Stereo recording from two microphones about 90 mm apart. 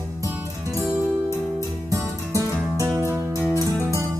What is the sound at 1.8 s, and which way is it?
Music, 35° right (ahead or behind).